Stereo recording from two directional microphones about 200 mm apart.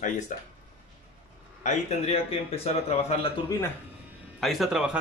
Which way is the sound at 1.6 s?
35° left (ahead or behind).